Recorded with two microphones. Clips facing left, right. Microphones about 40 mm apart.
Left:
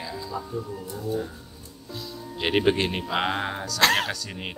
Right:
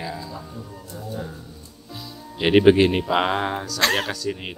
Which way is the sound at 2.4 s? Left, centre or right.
Centre.